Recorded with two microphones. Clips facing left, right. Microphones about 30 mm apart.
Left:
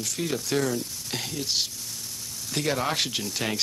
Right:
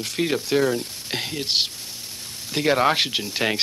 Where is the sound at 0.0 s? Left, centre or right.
Right.